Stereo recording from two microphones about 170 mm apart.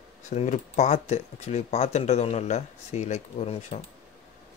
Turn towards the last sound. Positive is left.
turn(degrees=35)  # may be behind; listen again after turning